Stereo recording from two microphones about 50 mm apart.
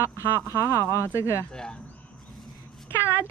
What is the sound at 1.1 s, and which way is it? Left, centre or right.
Speech, left.